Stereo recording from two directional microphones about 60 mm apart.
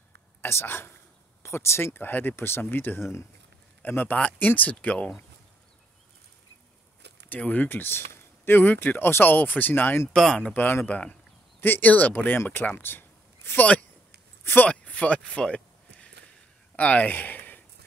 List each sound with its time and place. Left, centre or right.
0.4 s speech: left
4.2 s speech: left
7.2 s speech: left
10.1 s speech: centre
10.4 s speech: left
14.4 s speech: left
14.7 s a sound: left